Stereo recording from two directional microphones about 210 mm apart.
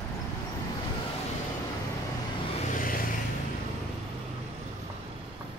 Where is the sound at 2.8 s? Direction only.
40° left (ahead or behind).